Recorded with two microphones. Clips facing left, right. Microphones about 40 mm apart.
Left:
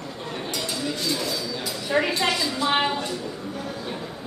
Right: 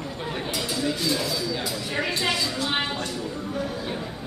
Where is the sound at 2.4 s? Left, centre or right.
Centre.